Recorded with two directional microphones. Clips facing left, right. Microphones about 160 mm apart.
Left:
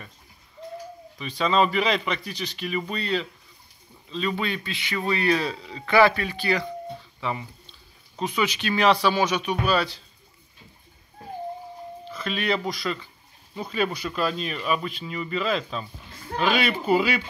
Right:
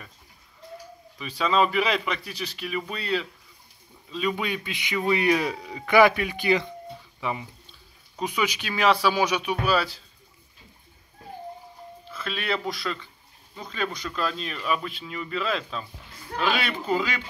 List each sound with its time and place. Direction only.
1.1 s a man's voice: 5° right (ahead or behind)
12.1 s speech: centre (ahead or behind)